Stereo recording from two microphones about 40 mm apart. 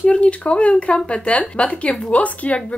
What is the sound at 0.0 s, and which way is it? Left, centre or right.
Speech, left.